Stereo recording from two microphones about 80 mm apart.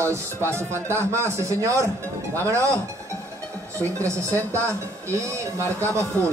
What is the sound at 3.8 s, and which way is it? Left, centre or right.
Speech, right.